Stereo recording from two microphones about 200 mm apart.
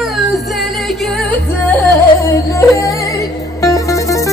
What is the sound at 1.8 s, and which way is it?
Music, 15° left (ahead or behind).